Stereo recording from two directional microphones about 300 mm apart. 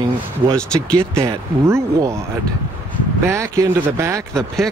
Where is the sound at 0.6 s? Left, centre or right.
Centre.